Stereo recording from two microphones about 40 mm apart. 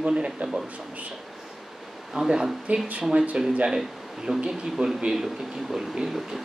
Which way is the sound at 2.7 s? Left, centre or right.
Right.